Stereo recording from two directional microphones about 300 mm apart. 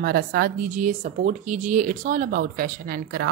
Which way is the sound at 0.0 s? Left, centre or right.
Right.